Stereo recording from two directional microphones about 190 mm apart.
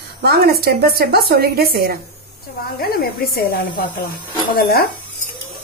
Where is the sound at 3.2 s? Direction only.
55° left (ahead or behind).